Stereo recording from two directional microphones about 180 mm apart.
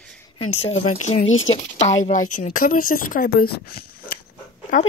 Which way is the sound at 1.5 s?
40° left (ahead or behind).